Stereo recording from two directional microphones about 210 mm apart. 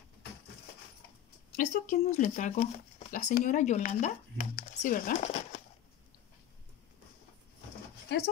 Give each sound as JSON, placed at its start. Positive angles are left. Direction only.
{"t": 1.6, "sound": "speech", "side_deg": 35}